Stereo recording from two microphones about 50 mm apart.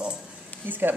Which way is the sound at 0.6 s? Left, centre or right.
Right.